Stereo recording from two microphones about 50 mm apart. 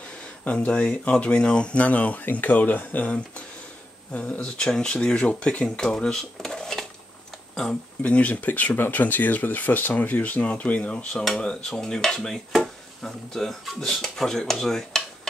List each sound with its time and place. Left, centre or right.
0.6 s speech: left
4.1 s speech: left; by 6.9 s centre
8.0 s speech: left
11.3 s dishes: centre